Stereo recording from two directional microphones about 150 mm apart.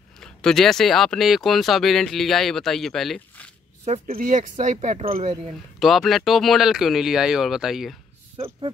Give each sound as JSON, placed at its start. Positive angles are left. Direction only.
{"t": 0.2, "sound": "speech", "side_deg": 5}
{"t": 3.8, "sound": "speech", "side_deg": -50}
{"t": 5.8, "sound": "speech", "side_deg": 0}